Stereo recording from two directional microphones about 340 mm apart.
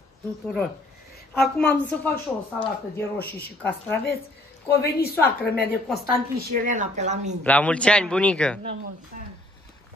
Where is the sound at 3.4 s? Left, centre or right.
Centre.